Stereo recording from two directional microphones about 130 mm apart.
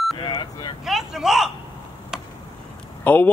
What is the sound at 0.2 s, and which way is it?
Vehicle, 35° left (ahead or behind).